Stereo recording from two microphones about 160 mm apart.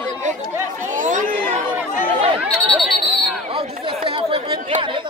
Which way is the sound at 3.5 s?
35° right (ahead or behind).